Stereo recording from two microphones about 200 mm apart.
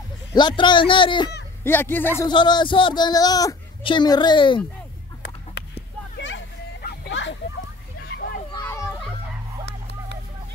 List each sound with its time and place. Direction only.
0.3 s speech: 20° left (ahead or behind)
1.6 s a man's voice: 10° left (ahead or behind)
2.2 s speech: 20° left (ahead or behind)
5.2 s a sound: 60° left (ahead or behind)
8.1 s children playing: 50° left (ahead or behind)
8.5 s children playing: 15° left (ahead or behind)